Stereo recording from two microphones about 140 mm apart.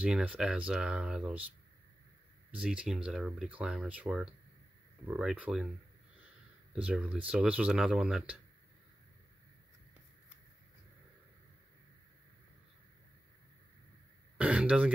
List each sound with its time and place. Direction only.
0.0 s speech: 10° right (ahead or behind)
2.5 s speech: 10° right (ahead or behind)
6.7 s speech: 10° right (ahead or behind)
14.4 s speech: 10° right (ahead or behind)